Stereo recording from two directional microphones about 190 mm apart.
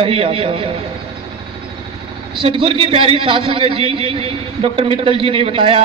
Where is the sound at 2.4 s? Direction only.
30° right (ahead or behind).